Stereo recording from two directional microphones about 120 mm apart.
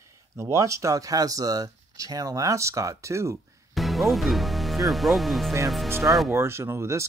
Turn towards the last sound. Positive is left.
turn(degrees=-25)  # may be behind; listen again after turning